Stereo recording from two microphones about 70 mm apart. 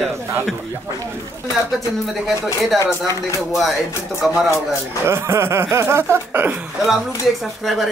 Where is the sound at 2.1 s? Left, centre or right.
Centre.